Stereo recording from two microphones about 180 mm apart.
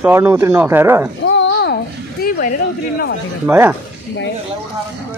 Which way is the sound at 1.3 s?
80° left.